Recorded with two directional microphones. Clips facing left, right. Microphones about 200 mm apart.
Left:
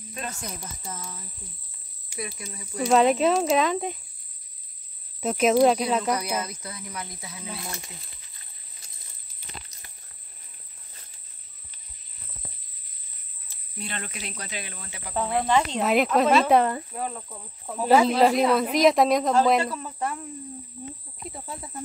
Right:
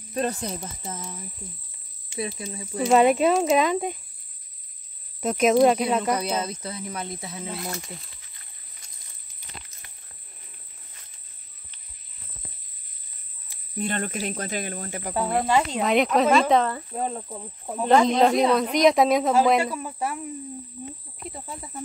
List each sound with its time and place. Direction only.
0.1 s speech: 35° right (ahead or behind)
0.6 s speech: 20° right (ahead or behind)
2.8 s speech: centre (ahead or behind)
5.2 s speech: centre (ahead or behind)
6.1 s speech: 30° right (ahead or behind)
13.7 s speech: 50° right (ahead or behind)
15.1 s speech: 5° right (ahead or behind); by 16.8 s 10° left (ahead or behind)
16.9 s speech: 25° right (ahead or behind)
17.7 s speech: 5° left (ahead or behind)
21.3 s speech: centre (ahead or behind)